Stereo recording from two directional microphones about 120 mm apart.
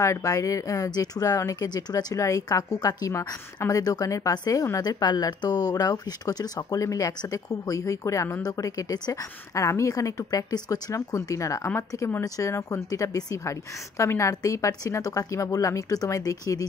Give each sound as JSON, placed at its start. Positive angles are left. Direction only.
{"t": 0.0, "sound": "speech", "side_deg": 25}